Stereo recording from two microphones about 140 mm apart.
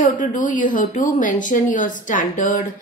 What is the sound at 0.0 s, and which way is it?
A woman's voice, 65° left (ahead or behind).